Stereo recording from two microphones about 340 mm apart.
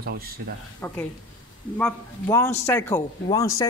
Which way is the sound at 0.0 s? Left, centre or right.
Right.